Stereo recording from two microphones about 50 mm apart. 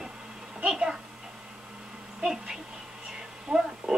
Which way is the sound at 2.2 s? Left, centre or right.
Centre.